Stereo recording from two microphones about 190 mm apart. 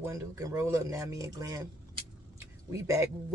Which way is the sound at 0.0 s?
15° right (ahead or behind).